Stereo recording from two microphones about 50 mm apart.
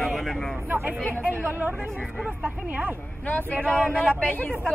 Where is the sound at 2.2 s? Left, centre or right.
Right.